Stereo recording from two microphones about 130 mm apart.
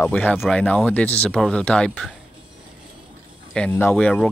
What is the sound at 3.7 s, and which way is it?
Speech, 15° left (ahead or behind).